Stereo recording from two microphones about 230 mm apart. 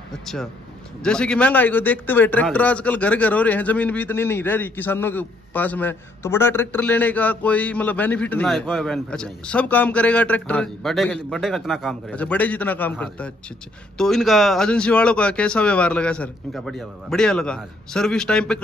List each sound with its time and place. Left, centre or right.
1.0 s a man's voice: centre